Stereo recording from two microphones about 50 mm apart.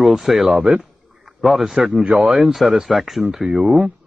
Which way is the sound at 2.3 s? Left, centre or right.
Centre.